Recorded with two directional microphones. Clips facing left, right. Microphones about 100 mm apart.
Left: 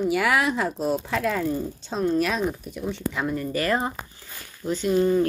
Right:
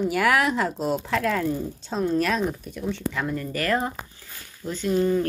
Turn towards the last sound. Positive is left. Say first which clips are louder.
# left 2 dB
turn(degrees=10)  # may be behind; listen again after turning